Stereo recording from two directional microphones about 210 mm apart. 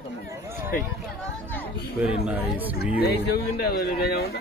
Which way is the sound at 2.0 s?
5° right (ahead or behind).